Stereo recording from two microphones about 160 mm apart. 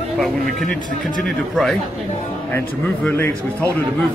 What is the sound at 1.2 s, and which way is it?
A man's voice, 5° left (ahead or behind).